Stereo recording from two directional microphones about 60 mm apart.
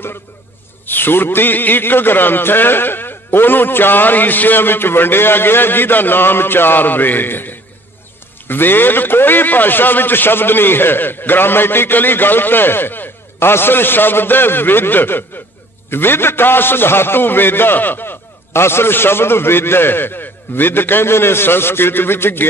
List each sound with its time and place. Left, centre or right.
0.8 s a man's voice: left